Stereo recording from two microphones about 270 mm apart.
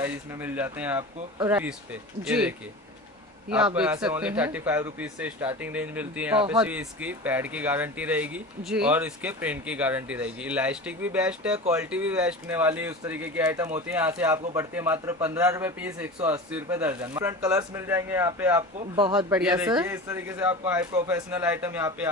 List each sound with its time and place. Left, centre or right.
0.0 s a man's voice: centre
19.6 s a man's voice: centre